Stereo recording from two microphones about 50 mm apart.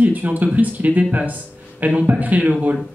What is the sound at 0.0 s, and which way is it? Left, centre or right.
Speech, right.